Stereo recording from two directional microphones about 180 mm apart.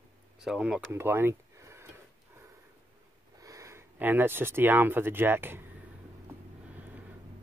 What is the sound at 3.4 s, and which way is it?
Speech, 20° right (ahead or behind).